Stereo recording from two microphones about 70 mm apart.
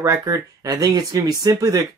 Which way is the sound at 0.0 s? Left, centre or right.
Right.